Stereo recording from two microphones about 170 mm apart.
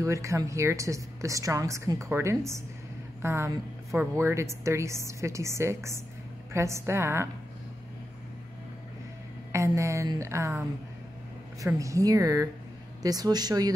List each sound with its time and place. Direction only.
0.0 s a woman's voice: 20° right (ahead or behind)
9.5 s a woman's voice: 15° right (ahead or behind)